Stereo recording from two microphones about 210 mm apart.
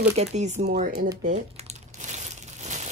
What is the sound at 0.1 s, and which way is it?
Speech, 30° right (ahead or behind).